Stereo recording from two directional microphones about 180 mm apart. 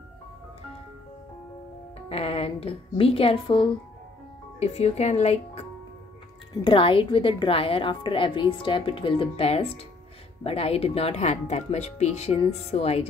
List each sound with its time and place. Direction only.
2.0 s a woman's voice: 35° left (ahead or behind)